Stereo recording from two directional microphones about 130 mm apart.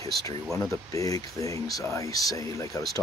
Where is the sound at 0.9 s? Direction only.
25° left (ahead or behind).